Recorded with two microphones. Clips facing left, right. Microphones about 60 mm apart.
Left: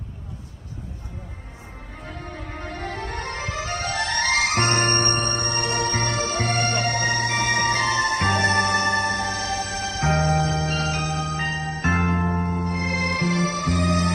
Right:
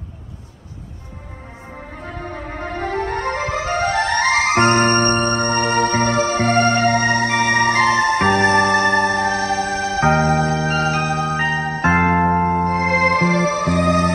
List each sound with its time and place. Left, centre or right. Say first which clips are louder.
2.0 s music: right 6 dB; right